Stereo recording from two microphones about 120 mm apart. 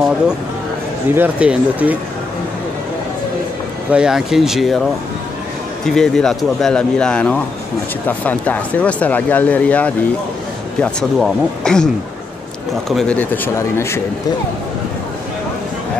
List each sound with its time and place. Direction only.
1.1 s speech: 10° right (ahead or behind)
3.9 s speech: 5° right (ahead or behind)
5.9 s speech: 5° left (ahead or behind); by 14.0 s 20° left (ahead or behind)